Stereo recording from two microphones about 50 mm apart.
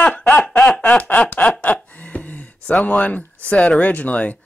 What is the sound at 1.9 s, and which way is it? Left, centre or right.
Speech, left.